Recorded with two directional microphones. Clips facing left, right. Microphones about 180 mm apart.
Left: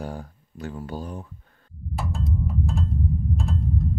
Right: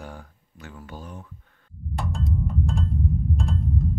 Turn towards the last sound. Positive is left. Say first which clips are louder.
# even
turn(degrees=0)  # may be behind; listen again after turning